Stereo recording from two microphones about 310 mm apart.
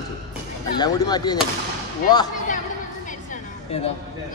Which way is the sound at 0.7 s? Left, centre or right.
Centre.